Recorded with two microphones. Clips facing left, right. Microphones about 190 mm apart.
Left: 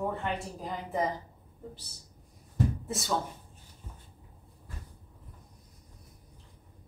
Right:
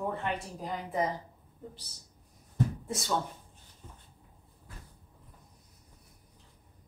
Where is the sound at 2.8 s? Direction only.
Centre (ahead or behind).